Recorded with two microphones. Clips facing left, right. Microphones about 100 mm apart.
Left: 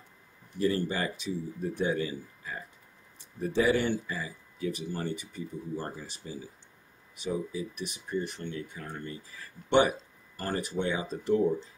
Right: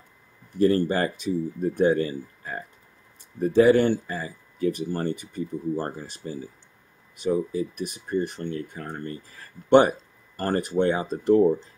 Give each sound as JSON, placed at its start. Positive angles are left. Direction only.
{"t": 0.6, "sound": "speech", "side_deg": -50}